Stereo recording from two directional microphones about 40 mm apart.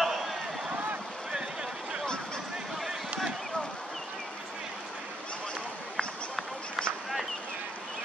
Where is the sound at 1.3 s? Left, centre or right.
Centre.